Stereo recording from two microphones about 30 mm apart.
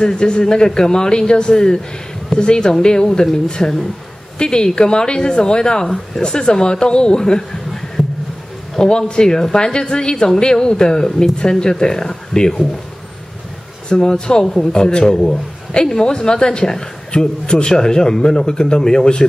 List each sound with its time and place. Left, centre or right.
0.0 s speech: left
13.8 s speech: left